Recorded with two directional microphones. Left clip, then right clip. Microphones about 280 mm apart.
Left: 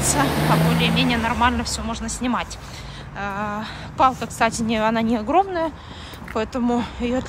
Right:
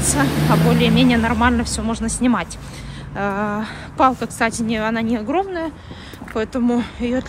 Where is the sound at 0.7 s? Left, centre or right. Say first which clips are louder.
Right 4 dB; centre.